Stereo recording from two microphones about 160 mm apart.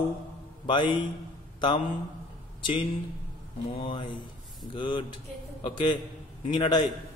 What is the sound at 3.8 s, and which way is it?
Speech, 35° left (ahead or behind).